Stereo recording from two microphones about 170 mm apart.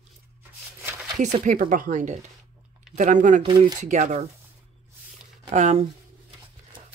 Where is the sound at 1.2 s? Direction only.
45° right (ahead or behind).